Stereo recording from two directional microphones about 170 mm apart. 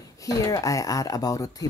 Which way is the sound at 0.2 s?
20° left (ahead or behind).